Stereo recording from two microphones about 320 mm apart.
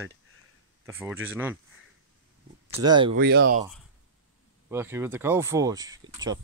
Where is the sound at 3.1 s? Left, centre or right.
Right.